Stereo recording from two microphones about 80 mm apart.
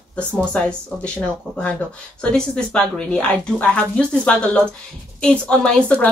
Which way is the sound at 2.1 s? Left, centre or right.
Centre.